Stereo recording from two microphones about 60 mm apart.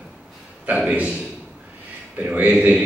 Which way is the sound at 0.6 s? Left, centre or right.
Right.